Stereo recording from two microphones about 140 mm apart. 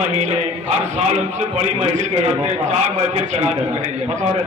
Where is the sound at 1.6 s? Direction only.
50° right (ahead or behind).